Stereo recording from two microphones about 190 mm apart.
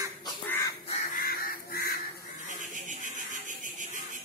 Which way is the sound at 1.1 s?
50° left (ahead or behind).